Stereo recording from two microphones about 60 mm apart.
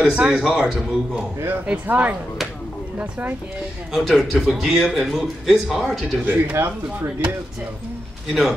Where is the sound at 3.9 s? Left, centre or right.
Centre.